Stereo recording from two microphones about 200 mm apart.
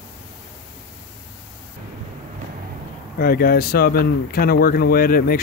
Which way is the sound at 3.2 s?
50° left (ahead or behind).